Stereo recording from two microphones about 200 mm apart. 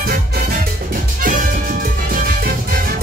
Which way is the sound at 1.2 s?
45° right (ahead or behind).